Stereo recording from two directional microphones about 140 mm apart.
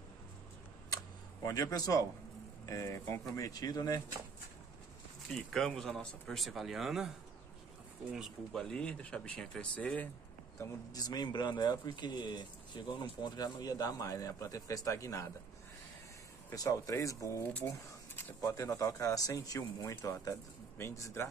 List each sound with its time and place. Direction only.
0.8 s camera: 25° left (ahead or behind)
2.6 s speech: 20° left (ahead or behind)
5.3 s speech: 5° left (ahead or behind)
8.1 s speech: centre (ahead or behind)
10.6 s speech: 25° left (ahead or behind)
16.5 s speech: 25° left (ahead or behind)